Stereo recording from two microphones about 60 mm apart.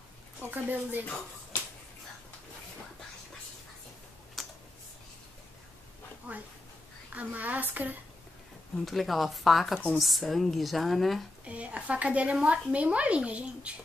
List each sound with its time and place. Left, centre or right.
0.4 s a woman's voice: right
4.4 s computer keyboard: centre
6.3 s speech: right
8.8 s speech: centre
11.4 s speech: right